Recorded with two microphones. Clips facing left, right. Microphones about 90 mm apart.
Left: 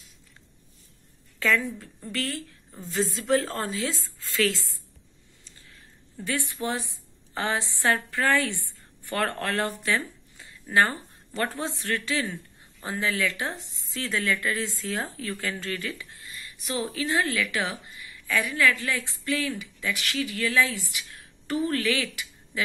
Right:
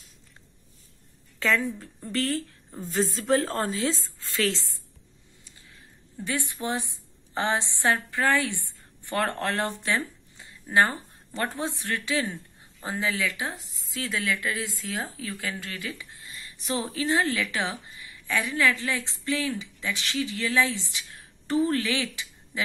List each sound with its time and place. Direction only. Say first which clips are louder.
1.4 s a woman's voice: even; 25° right (ahead or behind)
6.2 s a woman's voice: left 1 dB; 20° right (ahead or behind)